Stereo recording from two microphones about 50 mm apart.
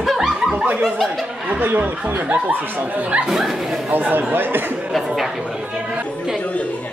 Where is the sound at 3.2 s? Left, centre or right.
Centre.